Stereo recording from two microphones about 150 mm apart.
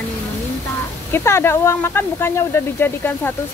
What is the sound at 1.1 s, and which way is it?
Speech, 15° left (ahead or behind).